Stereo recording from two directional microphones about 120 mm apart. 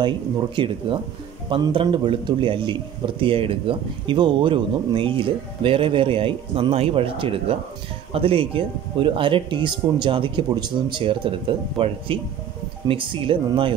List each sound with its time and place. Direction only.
0.6 s a man's voice: 45° right (ahead or behind)